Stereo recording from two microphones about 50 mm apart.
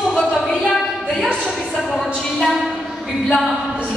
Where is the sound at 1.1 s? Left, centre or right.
Centre.